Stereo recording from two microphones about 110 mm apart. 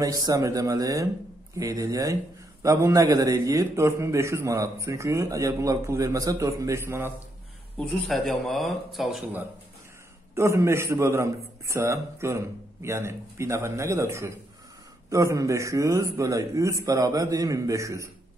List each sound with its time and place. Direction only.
0.0 s a man's voice: 35° right (ahead or behind)
7.7 s speech: 5° left (ahead or behind)
10.3 s a man's voice: 25° right (ahead or behind)